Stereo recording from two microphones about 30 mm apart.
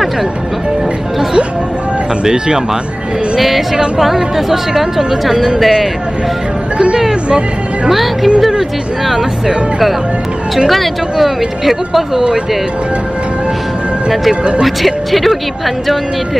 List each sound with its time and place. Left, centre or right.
2.2 s speech: right
3.3 s a woman's voice: centre
7.2 s speech: right
7.9 s speech: centre
10.7 s speech: centre
14.6 s speech: centre